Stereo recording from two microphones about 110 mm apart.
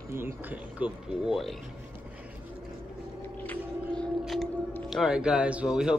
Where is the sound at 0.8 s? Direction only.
5° right (ahead or behind).